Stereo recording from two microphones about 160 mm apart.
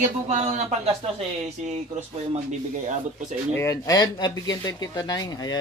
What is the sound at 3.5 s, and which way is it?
Speech, 20° left (ahead or behind).